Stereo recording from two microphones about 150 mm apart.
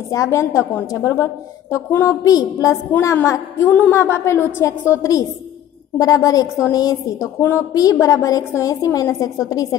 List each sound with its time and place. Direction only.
0.1 s a woman's voice: 20° left (ahead or behind)